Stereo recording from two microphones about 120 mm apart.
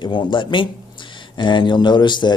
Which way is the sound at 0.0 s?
40° left (ahead or behind).